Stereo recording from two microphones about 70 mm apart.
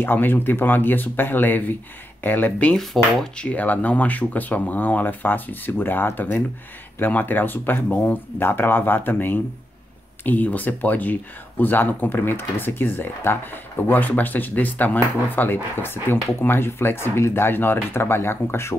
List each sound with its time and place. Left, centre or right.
0.0 s speech: left
2.7 s cutlery: centre
3.3 s speech: centre; by 18.8 s left